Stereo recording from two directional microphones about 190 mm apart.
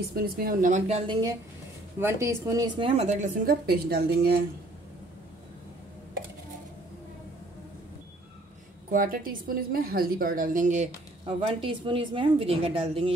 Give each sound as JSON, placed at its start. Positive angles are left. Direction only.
{"t": 0.1, "sound": "a woman's voice", "side_deg": -50}
{"t": 2.0, "sound": "a woman's voice", "side_deg": -15}
{"t": 3.6, "sound": "speech", "side_deg": -55}
{"t": 8.9, "sound": "a woman's voice", "side_deg": -45}